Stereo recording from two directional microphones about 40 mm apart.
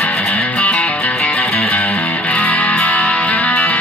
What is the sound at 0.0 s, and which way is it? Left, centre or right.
Music, left.